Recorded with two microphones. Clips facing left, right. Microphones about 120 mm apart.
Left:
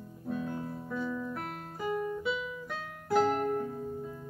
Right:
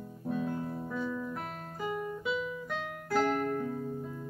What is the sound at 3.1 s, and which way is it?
Music, 15° left (ahead or behind).